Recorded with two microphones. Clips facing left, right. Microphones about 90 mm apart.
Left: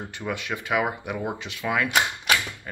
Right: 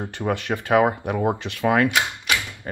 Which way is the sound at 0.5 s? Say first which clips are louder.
Right 7 dB; 40° right (ahead or behind).